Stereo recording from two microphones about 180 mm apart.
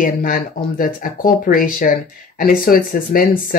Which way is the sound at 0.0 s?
50° left (ahead or behind).